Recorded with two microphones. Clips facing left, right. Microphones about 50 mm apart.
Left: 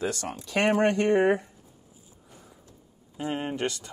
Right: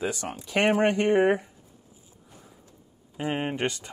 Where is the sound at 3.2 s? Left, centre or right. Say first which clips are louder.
Right 2 dB; right.